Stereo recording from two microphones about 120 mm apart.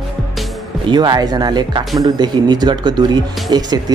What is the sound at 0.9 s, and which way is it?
Speech, 35° right (ahead or behind).